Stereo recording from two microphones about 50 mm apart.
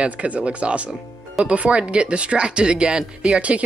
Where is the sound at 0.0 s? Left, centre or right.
Right.